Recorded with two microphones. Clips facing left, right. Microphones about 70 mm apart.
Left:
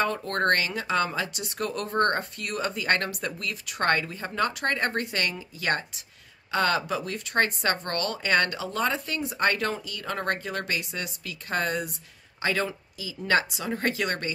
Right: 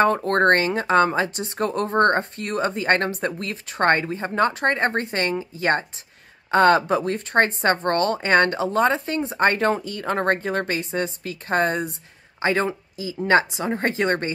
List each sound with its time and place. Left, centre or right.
0.0 s speech: right